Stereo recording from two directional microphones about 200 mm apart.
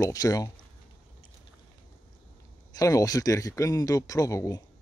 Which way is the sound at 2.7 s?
15° left (ahead or behind).